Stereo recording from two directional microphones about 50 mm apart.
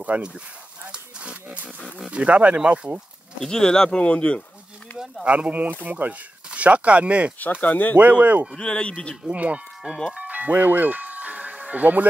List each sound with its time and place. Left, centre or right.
0.0 s speech: right
0.9 s livestock: right
2.0 s speech: right
3.3 s speech: centre
5.2 s speech: right
7.6 s speech: left
8.0 s speech: right
8.5 s speech: centre
9.3 s speech: right
10.1 s music: right